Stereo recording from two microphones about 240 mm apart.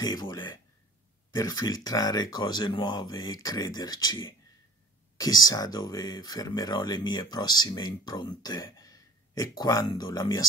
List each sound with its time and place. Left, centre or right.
0.0 s speech: centre